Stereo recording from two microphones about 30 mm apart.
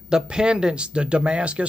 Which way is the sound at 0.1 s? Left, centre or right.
Right.